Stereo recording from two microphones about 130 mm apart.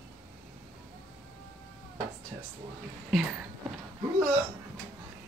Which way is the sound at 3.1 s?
5° right (ahead or behind).